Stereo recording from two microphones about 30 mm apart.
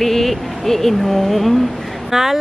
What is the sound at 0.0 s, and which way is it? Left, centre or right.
Speech, centre.